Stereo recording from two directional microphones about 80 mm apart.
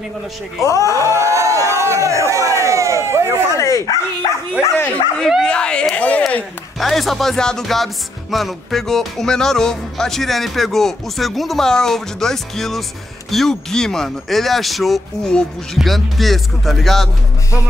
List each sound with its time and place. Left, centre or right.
0.7 s speech: left
1.0 s a sound: right
3.5 s dog: left
4.8 s speech: centre
6.8 s speech: centre